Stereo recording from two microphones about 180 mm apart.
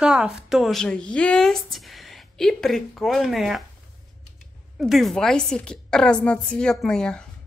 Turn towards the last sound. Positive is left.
turn(degrees=5)  # may be behind; listen again after turning